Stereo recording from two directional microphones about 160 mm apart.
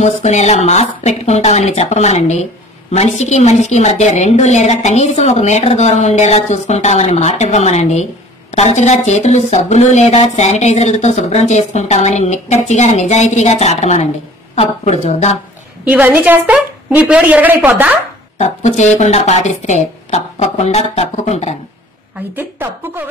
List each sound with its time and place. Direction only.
0.0 s a woman's voice: 45° left (ahead or behind)
15.8 s a woman's voice: 10° right (ahead or behind)
18.4 s a woman's voice: 45° left (ahead or behind)
22.3 s a woman's voice: 10° right (ahead or behind)